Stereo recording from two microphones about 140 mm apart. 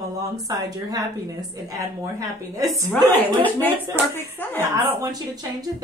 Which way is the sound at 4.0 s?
15° right (ahead or behind).